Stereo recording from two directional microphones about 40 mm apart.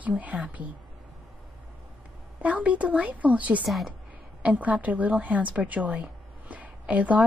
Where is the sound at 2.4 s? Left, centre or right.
Right.